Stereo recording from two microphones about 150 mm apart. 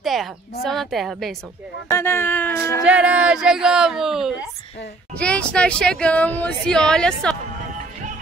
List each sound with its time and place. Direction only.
0.0 s speech: centre (ahead or behind)
1.9 s speech: 15° left (ahead or behind)
2.8 s speech: 10° right (ahead or behind)
5.2 s speech: 5° left (ahead or behind)